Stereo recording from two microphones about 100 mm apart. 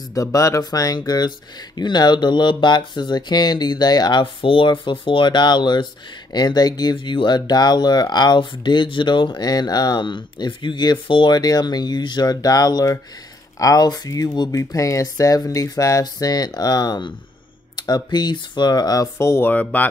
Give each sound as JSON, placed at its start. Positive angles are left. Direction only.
{"t": 0.1, "sound": "speech", "side_deg": 35}